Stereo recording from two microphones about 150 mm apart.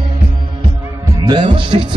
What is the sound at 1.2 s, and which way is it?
Music, 35° right (ahead or behind).